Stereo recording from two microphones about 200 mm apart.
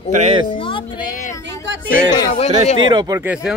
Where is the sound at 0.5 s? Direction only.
25° left (ahead or behind).